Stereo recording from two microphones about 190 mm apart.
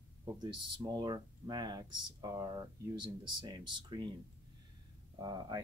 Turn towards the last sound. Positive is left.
turn(degrees=-20)  # may be behind; listen again after turning